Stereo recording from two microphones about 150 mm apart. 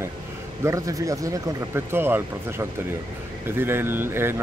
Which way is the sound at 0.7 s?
20° right (ahead or behind).